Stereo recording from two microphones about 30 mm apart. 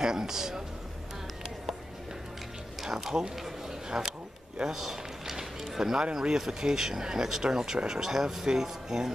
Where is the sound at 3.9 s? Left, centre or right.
Right.